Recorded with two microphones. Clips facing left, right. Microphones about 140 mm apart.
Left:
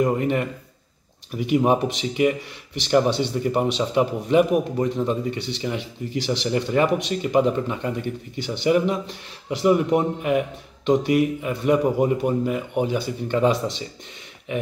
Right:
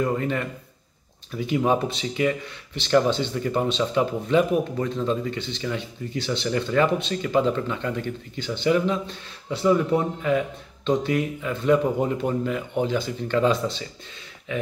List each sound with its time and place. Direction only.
0.0 s a man's voice: 20° left (ahead or behind)